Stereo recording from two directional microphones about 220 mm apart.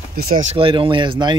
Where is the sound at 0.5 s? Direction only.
25° right (ahead or behind).